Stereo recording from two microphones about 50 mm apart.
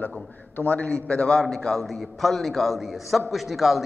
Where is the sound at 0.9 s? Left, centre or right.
Centre.